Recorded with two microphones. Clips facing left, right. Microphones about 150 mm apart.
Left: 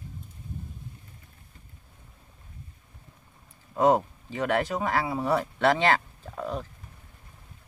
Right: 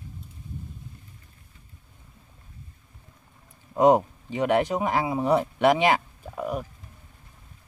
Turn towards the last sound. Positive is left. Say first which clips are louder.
# right 3 dB
turn(degrees=-10)  # may be behind; listen again after turning